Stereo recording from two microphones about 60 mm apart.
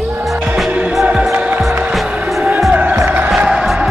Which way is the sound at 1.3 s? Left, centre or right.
Right.